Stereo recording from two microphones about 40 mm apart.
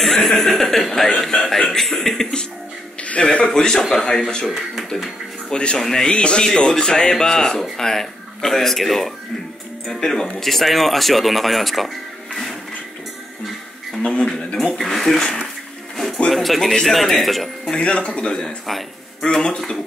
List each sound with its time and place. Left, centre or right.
0.0 s chuckle: centre
1.2 s speech: centre
3.0 s a sound: left
3.5 s speech: centre
5.5 s speech: left
5.8 s speech: centre
6.1 s speech: left; by 9.1 s centre
9.8 s speech: centre
10.4 s speech: centre
14.0 s speech: left
14.8 s speech: centre
15.1 s speech: centre
16.3 s speech: centre
17.7 s speech: left